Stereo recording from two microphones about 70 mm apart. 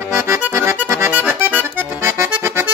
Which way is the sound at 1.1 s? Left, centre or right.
Right.